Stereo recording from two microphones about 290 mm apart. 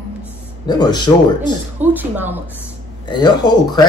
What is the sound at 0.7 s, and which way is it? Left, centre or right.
Speech, centre.